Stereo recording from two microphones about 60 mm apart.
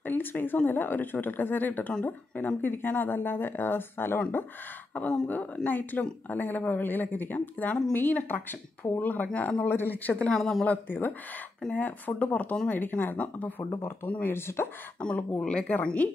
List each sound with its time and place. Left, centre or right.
0.0 s speech: left
4.9 s a woman's voice: left
9.7 s a woman's voice: left
10.3 s speech: centre
10.6 s a woman's voice: left
11.6 s speech: centre
12.2 s a woman's voice: left
15.0 s a woman's voice: centre